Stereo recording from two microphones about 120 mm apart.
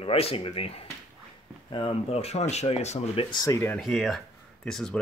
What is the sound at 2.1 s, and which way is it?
Speech, 60° left (ahead or behind).